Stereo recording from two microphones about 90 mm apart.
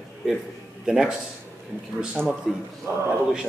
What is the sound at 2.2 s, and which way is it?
Speech, 20° right (ahead or behind).